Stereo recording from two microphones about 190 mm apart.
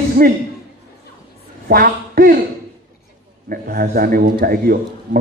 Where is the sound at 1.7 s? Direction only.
50° right (ahead or behind).